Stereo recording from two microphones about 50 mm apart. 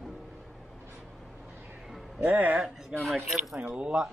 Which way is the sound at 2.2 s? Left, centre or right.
Right.